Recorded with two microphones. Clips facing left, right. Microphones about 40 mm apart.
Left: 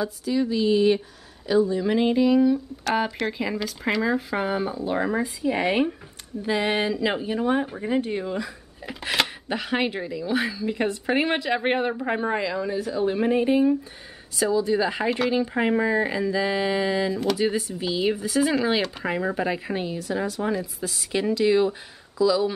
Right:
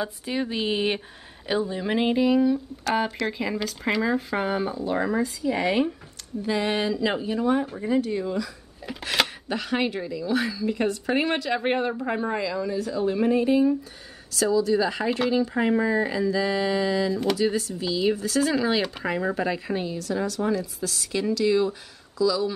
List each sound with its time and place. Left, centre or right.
0.0 s a woman's voice: right; by 7.9 s centre
7.9 s speech: left
8.8 s speech: centre
15.0 s speech: centre
15.3 s speech: left